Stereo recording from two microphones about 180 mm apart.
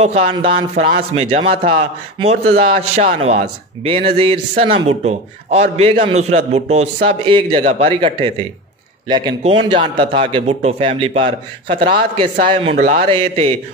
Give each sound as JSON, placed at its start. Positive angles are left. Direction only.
{"t": 0.0, "sound": "a man's voice", "side_deg": -35}